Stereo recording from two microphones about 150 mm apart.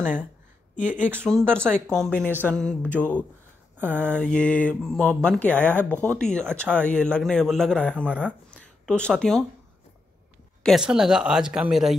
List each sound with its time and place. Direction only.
0.7 s speech: 55° left (ahead or behind)
1.5 s speech: 15° right (ahead or behind)
1.9 s speech: 5° left (ahead or behind)
3.7 s speech: 15° right (ahead or behind)
4.1 s speech: 5° left (ahead or behind)
5.5 s speech: 15° right (ahead or behind)
6.1 s speech: 5° left (ahead or behind)
10.6 s speech: centre (ahead or behind)